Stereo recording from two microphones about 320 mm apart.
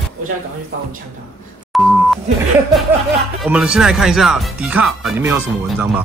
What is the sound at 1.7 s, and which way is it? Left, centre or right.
Beep, centre.